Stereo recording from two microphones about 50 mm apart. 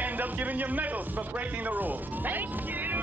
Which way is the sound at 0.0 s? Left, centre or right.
Right.